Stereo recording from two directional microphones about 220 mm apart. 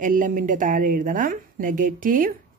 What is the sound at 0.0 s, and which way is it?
A woman's voice, 35° right (ahead or behind).